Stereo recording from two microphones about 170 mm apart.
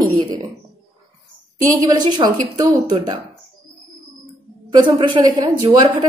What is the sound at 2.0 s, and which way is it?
A woman's voice, 25° right (ahead or behind).